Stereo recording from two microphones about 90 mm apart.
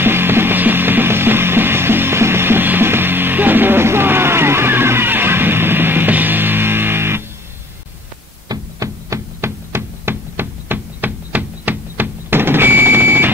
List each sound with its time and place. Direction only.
0.0 s music: 25° right (ahead or behind)
8.5 s knock: 40° right (ahead or behind); by 13.3 s 25° right (ahead or behind)